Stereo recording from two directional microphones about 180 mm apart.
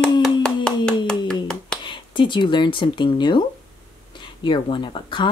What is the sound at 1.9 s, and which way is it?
Speech, 25° left (ahead or behind).